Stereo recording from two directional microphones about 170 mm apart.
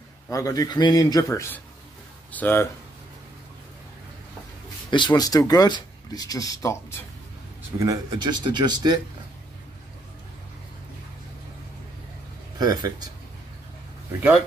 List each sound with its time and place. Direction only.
0.3 s speech: 20° left (ahead or behind)
4.9 s speech: 25° left (ahead or behind)
7.8 s speech: 25° right (ahead or behind)
12.5 s speech: 25° right (ahead or behind)